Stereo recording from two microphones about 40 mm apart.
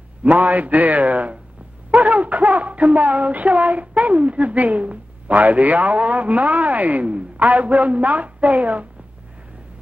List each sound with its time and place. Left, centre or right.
0.3 s music: right